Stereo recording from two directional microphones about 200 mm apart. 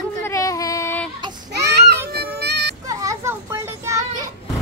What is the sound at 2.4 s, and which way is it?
Music, 55° right (ahead or behind).